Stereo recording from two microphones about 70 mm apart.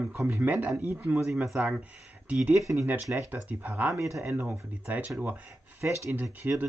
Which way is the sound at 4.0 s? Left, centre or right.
Right.